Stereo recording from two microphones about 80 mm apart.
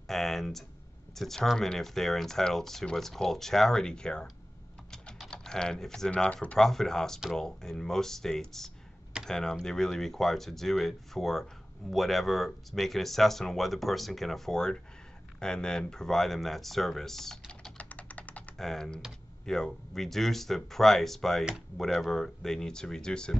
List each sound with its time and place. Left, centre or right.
0.0 s speech: centre
17.5 s typing: centre
18.6 s speech: centre